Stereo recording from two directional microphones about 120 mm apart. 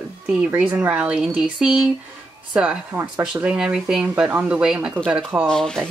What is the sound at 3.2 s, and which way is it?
Speech, 10° right (ahead or behind).